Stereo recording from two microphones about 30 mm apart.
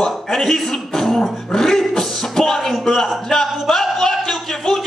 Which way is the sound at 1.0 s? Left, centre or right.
Centre.